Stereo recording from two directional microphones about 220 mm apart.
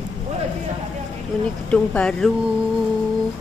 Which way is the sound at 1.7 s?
5° left (ahead or behind).